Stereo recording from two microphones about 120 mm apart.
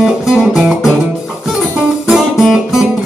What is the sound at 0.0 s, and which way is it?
Music, 5° right (ahead or behind).